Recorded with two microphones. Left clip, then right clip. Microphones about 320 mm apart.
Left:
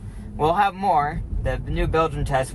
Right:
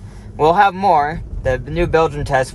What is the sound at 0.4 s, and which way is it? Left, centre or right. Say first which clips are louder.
Speech: right 7 dB; right.